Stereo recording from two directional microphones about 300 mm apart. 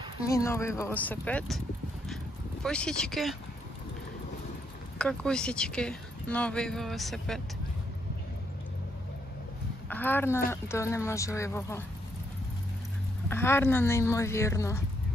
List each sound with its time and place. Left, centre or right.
0.2 s speech: centre
2.6 s speech: centre
4.9 s speech: centre
9.8 s speech: centre
13.3 s speech: centre